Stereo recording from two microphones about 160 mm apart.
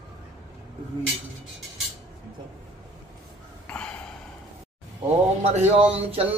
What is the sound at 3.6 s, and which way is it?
Snort, 5° left (ahead or behind).